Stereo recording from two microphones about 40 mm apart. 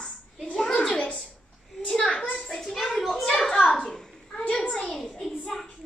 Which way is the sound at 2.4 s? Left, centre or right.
Centre.